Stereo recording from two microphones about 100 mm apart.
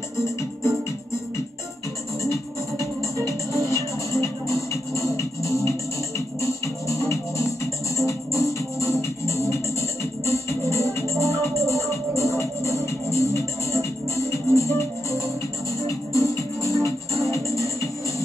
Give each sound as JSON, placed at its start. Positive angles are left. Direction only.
{"t": 3.2, "sound": "music", "side_deg": 30}